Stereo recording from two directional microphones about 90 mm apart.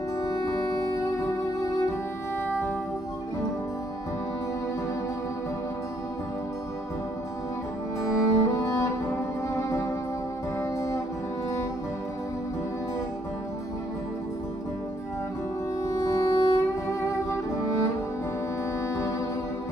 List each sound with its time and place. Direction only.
8.0 s music: 35° left (ahead or behind)
15.8 s music: 35° left (ahead or behind)
18.9 s music: 35° left (ahead or behind)